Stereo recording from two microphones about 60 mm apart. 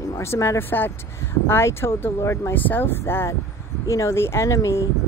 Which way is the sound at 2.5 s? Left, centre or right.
Left.